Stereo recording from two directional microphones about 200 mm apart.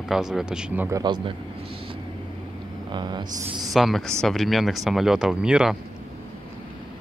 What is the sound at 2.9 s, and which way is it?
Speech, 20° right (ahead or behind).